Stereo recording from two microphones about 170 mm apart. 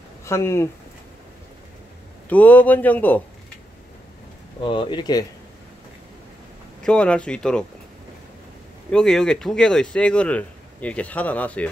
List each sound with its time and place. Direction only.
0.2 s speech: 15° left (ahead or behind)
2.2 s speech: 10° left (ahead or behind)
4.6 s speech: 30° left (ahead or behind)
6.8 s speech: 5° left (ahead or behind)
8.9 s speech: 5° left (ahead or behind)